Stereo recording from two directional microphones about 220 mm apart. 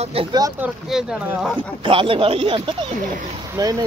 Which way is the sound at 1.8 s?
25° right (ahead or behind).